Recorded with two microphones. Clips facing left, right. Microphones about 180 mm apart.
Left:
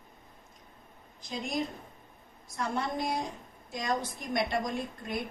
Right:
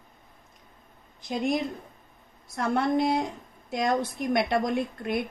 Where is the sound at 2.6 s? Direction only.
60° right (ahead or behind).